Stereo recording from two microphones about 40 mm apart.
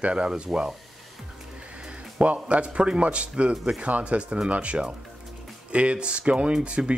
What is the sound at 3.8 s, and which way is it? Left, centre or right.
A man's voice, right.